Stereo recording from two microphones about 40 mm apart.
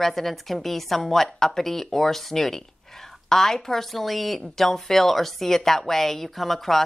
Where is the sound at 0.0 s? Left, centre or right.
Centre.